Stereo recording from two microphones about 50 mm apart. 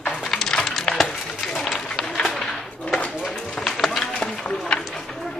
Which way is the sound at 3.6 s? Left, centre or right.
Centre.